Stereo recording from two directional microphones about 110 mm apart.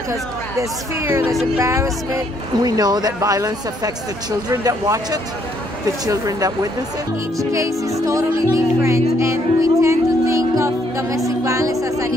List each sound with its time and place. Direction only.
0.1 s speech: 30° right (ahead or behind)